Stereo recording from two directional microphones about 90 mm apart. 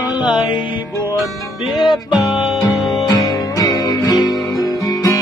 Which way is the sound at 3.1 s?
40° left (ahead or behind).